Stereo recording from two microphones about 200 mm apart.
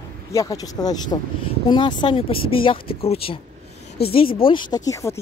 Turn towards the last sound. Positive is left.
turn(degrees=15)  # may be behind; listen again after turning